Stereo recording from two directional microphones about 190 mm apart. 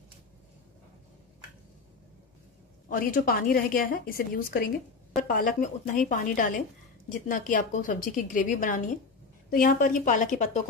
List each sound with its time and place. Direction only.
2.9 s a woman's voice: 45° left (ahead or behind)